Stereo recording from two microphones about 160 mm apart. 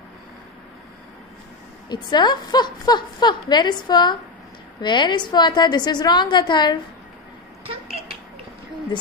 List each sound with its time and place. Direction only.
2.0 s a woman's voice: 25° left (ahead or behind)